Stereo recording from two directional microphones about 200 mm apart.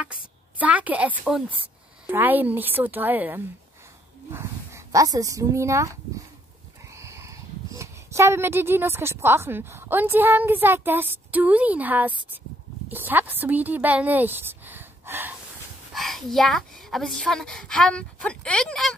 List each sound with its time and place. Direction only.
0.0 s a sound: 5° right (ahead or behind)
2.0 s a woman's voice: 10° right (ahead or behind)
15.9 s a woman's voice: centre (ahead or behind)